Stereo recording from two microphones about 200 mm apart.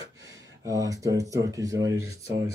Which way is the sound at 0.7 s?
15° right (ahead or behind).